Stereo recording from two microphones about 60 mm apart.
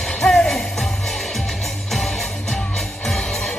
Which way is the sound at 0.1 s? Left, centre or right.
Centre.